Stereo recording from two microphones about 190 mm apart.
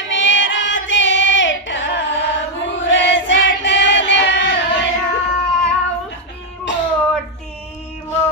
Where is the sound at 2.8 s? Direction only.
75° left (ahead or behind).